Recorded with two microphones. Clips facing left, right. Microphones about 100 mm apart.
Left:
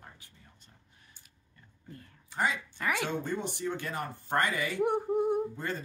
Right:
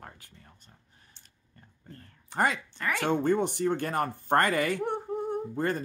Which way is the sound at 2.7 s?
15° left (ahead or behind).